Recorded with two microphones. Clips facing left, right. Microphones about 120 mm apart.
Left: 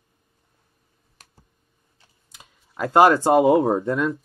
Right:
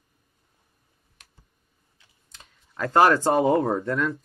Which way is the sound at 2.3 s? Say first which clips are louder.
Left 2 dB; 10° left (ahead or behind).